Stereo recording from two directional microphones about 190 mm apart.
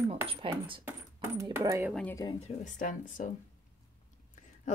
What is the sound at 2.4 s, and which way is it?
Speech, 40° left (ahead or behind).